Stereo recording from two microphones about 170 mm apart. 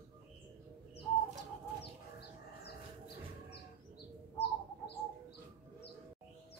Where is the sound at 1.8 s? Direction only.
75° left (ahead or behind).